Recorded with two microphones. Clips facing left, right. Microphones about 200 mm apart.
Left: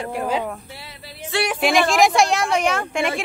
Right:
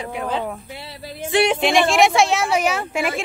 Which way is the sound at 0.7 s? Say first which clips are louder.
Right 4 dB; 25° right (ahead or behind).